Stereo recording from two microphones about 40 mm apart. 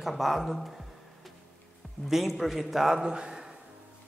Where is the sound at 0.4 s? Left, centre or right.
Centre.